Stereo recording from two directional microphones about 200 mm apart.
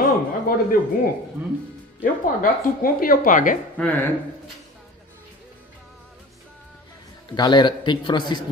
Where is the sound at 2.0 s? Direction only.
45° left (ahead or behind).